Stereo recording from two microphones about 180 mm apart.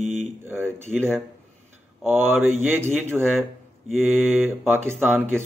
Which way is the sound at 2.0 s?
10° right (ahead or behind).